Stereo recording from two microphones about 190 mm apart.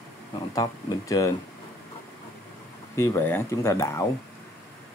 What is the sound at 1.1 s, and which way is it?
Speech, 20° left (ahead or behind).